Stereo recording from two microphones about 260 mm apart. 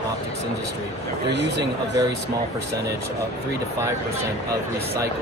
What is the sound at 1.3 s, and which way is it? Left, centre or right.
Speech, right.